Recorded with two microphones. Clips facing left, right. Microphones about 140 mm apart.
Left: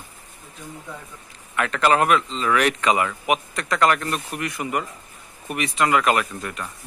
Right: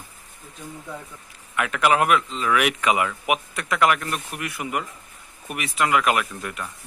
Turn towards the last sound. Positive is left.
turn(degrees=-5)  # may be behind; listen again after turning